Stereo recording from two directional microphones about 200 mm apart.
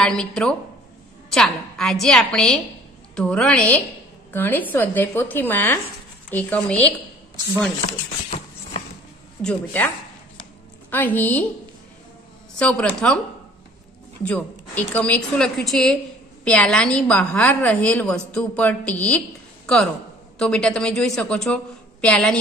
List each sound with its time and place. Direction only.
0.0 s a woman's voice: 5° left (ahead or behind)
8.3 s a sound: 35° left (ahead or behind)
9.4 s a woman's voice: 5° left (ahead or behind)
10.9 s a woman's voice: 10° left (ahead or behind)
12.5 s a woman's voice: 5° left (ahead or behind)
14.2 s a woman's voice: 5° left (ahead or behind)